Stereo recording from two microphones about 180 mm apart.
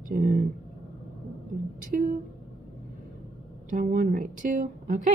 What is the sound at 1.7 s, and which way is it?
Speech, 50° right (ahead or behind).